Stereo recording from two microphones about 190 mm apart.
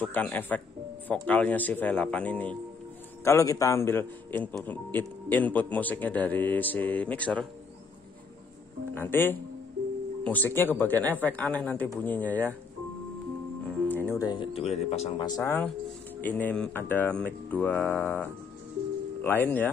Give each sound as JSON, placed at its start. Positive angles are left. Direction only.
{"t": 0.0, "sound": "a man's voice", "side_deg": 10}
{"t": 8.9, "sound": "a man's voice", "side_deg": 10}
{"t": 13.7, "sound": "speech", "side_deg": 10}
{"t": 15.1, "sound": "a man's voice", "side_deg": 20}